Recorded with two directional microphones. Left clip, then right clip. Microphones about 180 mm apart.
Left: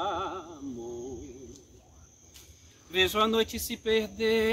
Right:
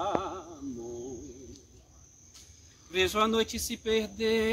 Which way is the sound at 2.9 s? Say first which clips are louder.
Left 1 dB; centre (ahead or behind).